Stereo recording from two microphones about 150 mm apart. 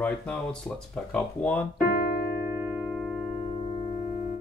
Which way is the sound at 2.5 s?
10° right (ahead or behind).